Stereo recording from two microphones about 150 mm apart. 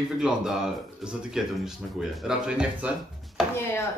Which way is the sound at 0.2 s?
5° right (ahead or behind).